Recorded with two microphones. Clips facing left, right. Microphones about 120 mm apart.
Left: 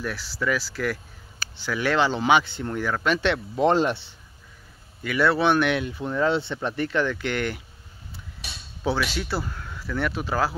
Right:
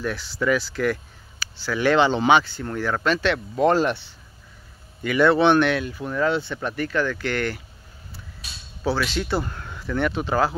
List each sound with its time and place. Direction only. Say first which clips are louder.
0.0 s speech: right 3 dB; 5° left (ahead or behind)
2.4 s speech: right 1 dB; 20° left (ahead or behind)
3.2 s speech: right 1 dB; 20° left (ahead or behind)
5.0 s speech: right 4 dB; 5° left (ahead or behind)
5.7 s speech: right 1 dB; 20° left (ahead or behind)
8.8 s speech: right 2 dB; 10° left (ahead or behind)